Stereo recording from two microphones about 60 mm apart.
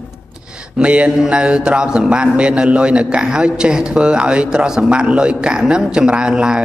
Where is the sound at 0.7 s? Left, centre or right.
Centre.